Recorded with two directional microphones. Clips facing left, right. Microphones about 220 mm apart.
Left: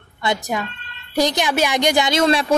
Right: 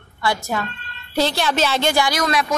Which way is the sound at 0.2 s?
20° left (ahead or behind).